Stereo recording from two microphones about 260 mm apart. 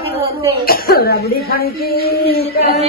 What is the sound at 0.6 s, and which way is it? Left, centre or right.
Speech, left.